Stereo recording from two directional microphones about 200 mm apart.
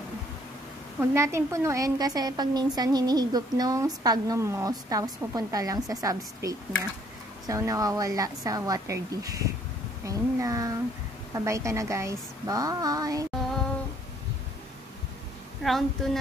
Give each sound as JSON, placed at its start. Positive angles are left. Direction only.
{"t": 1.1, "sound": "a woman's voice", "side_deg": -15}
{"t": 15.6, "sound": "a woman's voice", "side_deg": 0}